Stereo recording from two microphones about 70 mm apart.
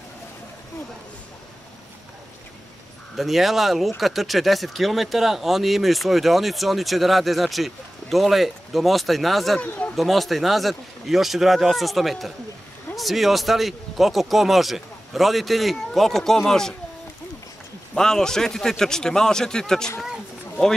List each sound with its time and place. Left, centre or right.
3.2 s speech: centre
9.6 s speech: left
9.9 s speech: centre
17.9 s speech: centre
20.0 s a sound: centre